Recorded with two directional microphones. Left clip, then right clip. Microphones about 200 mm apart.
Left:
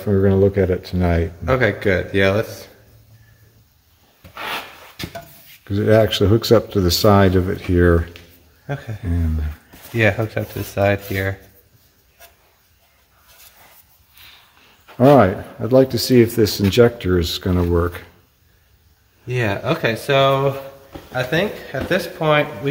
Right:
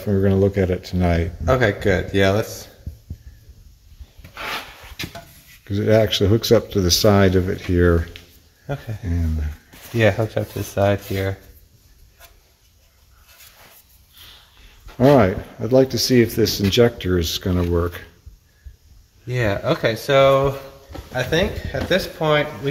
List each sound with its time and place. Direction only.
0.0 s speech: centre (ahead or behind)
1.4 s a man's voice: 45° right (ahead or behind)
5.0 s speech: centre (ahead or behind)
8.7 s speech: 15° right (ahead or behind)
9.0 s speech: centre (ahead or behind)
9.9 s speech: 20° right (ahead or behind)
15.0 s speech: centre (ahead or behind)
19.2 s speech: 30° right (ahead or behind)